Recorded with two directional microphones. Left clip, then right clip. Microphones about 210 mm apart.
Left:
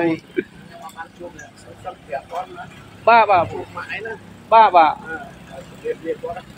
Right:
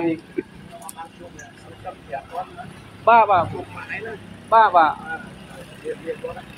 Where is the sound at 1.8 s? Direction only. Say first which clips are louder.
Left 2 dB; 30° left (ahead or behind).